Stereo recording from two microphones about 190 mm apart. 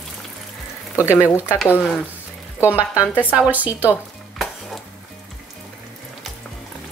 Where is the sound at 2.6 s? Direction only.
5° right (ahead or behind).